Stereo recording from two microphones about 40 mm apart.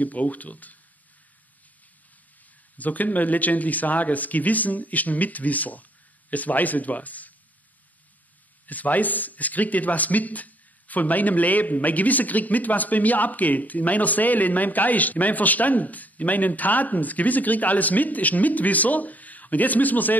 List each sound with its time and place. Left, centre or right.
0.0 s speech: left
2.8 s speech: left
8.6 s speech: left